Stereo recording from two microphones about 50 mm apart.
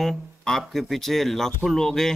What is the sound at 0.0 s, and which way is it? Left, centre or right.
Speech, centre.